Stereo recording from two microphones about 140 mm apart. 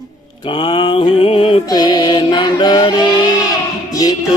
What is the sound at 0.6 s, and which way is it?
Mantra, 35° left (ahead or behind).